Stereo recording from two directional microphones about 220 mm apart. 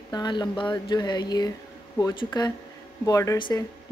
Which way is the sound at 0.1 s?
20° left (ahead or behind).